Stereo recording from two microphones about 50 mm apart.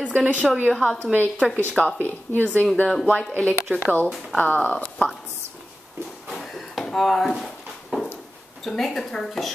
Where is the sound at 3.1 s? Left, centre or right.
Left.